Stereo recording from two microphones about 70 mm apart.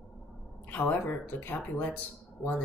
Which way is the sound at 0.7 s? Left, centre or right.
Left.